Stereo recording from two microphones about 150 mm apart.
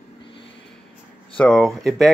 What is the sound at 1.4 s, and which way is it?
Speech, centre (ahead or behind).